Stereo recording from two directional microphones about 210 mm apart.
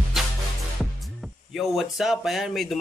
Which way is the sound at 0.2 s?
Centre (ahead or behind).